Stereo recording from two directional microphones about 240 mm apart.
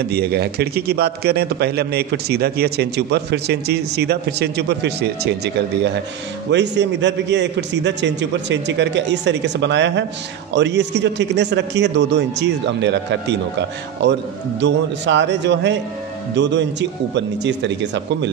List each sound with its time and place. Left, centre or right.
0.1 s a man's voice: right
6.5 s a man's voice: right